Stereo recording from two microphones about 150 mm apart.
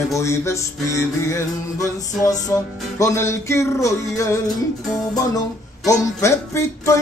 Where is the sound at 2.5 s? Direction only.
20° left (ahead or behind).